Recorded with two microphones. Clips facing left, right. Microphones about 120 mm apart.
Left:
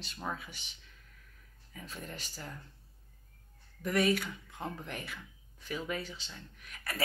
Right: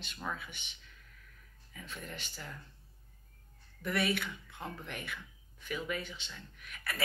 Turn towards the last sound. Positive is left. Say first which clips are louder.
# left 2 dB
turn(degrees=35)  # may be behind; listen again after turning